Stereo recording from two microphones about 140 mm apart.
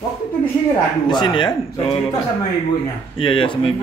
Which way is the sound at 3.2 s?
40° left (ahead or behind).